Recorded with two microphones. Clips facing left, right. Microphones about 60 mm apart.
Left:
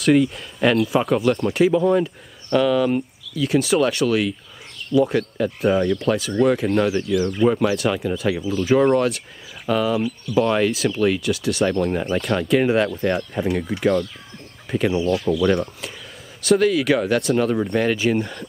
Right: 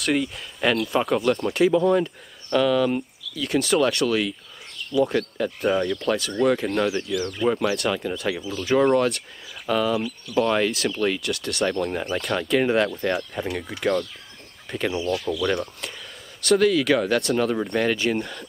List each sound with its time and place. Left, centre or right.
0.0 s speech: centre
16.3 s speech: centre
17.2 s speech: centre